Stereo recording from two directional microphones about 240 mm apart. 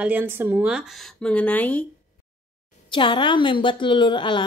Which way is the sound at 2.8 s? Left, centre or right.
Centre.